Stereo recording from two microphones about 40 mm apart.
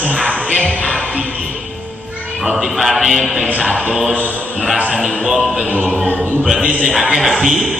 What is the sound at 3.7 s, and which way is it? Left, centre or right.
Music, right.